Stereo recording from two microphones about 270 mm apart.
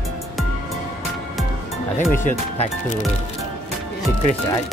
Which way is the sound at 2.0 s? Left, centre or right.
Left.